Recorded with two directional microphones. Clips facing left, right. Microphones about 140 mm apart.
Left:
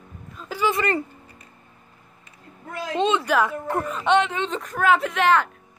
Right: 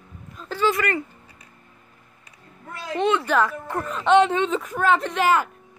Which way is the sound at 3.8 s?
5° left (ahead or behind).